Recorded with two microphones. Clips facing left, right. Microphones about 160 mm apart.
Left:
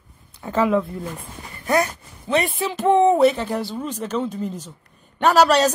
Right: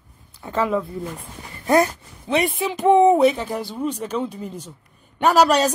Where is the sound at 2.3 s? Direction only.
10° right (ahead or behind).